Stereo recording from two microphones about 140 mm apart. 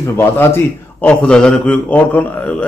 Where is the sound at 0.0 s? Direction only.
20° left (ahead or behind).